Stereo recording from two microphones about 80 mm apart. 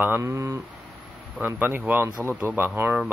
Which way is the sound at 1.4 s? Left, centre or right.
Right.